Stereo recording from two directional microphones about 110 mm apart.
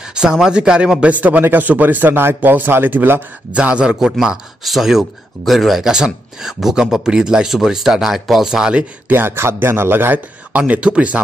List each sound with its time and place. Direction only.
0.0 s speech: 5° right (ahead or behind)
9.1 s a man's voice: 20° right (ahead or behind)